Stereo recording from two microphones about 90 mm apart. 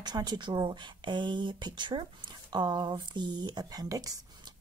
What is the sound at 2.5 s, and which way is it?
Speech, 50° right (ahead or behind).